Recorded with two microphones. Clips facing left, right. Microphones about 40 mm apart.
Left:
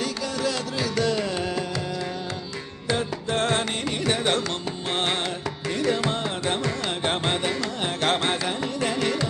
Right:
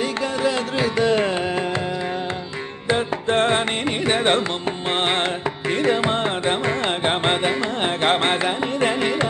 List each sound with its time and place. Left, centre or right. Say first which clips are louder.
0.0 s music: right 5 dB; right
2.9 s carnatic music: right 5 dB; right